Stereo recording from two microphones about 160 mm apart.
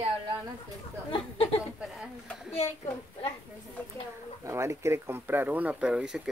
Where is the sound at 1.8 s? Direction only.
Centre (ahead or behind).